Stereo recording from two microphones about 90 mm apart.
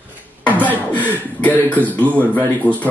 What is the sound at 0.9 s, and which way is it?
Speech, 20° left (ahead or behind).